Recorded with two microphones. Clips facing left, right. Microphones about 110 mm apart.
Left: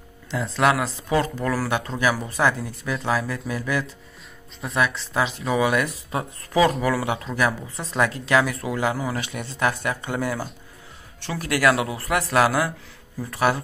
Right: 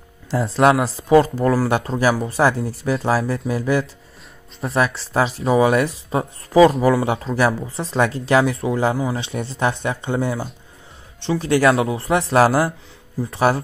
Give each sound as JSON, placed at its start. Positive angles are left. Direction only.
{"t": 0.3, "sound": "speech", "side_deg": -35}
{"t": 7.1, "sound": "speech", "side_deg": -35}